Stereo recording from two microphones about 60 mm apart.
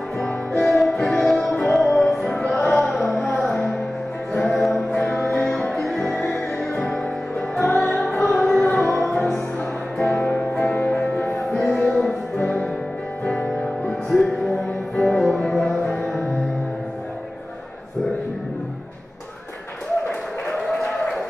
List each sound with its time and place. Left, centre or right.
0.5 s music: centre
10.2 s music: left
10.5 s music: centre
11.4 s music: centre
14.1 s music: centre
20.5 s a sound: centre